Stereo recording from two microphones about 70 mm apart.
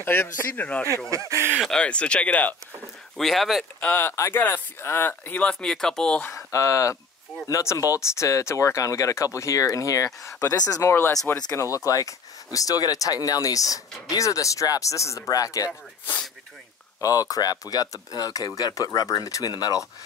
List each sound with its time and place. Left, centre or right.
0.0 s speech: left
3.2 s speech: centre
3.8 s speech: left
4.1 s speech: left
4.4 s speech: left
5.6 s speech: centre
6.3 s speech: left
11.5 s speech: left
17.0 s speech: left